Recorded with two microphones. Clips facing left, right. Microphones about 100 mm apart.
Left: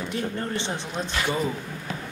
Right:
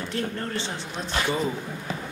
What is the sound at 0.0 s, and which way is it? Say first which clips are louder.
Speech: even; 10° left (ahead or behind).